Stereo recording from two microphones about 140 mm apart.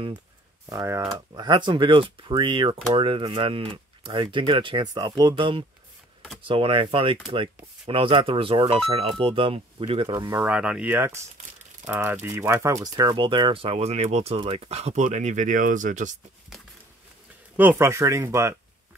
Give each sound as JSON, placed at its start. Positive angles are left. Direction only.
{"t": 0.7, "sound": "speech", "side_deg": -20}
{"t": 1.3, "sound": "speech", "side_deg": -35}
{"t": 10.0, "sound": "speech", "side_deg": -25}
{"t": 17.6, "sound": "speech", "side_deg": -15}